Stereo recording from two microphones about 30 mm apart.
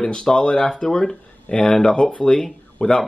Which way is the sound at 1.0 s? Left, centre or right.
Centre.